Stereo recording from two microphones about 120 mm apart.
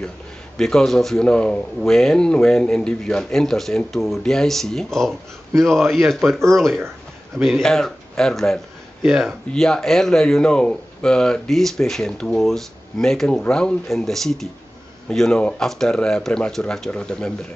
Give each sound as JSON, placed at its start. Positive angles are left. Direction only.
{"t": 0.6, "sound": "speech", "side_deg": 5}